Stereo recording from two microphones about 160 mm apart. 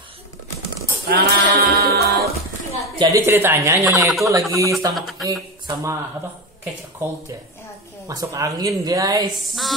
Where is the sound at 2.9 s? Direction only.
20° right (ahead or behind).